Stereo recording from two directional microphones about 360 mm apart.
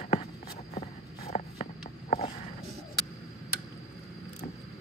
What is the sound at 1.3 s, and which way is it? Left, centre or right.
Walk, centre.